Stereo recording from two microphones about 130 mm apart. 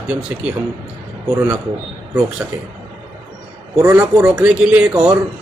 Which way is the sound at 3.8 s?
20° right (ahead or behind).